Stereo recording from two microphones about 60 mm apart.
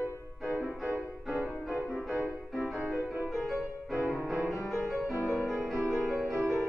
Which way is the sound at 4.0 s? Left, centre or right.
Right.